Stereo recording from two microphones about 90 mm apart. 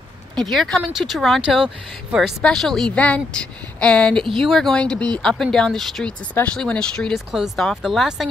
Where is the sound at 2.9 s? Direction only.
15° left (ahead or behind); by 8.2 s centre (ahead or behind).